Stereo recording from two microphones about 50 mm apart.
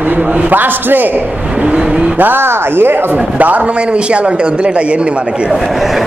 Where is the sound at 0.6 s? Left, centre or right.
Right.